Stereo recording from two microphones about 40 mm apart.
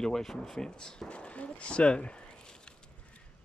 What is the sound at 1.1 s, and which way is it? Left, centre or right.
Speech, left.